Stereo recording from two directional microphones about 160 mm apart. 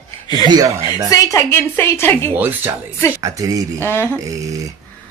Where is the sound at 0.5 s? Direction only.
25° right (ahead or behind).